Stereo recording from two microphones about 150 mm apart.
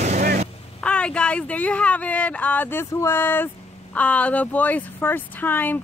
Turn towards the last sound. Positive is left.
turn(degrees=15)  # may be behind; listen again after turning